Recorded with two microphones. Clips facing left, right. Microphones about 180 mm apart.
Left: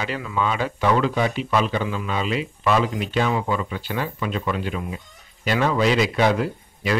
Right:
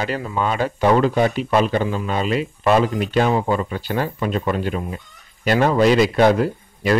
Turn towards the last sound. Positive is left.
turn(degrees=-45)  # may be behind; listen again after turning